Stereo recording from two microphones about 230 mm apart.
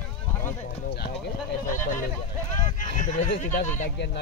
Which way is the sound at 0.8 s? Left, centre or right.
Left.